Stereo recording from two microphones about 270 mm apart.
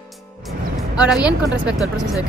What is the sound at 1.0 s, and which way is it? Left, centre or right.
Speech, centre.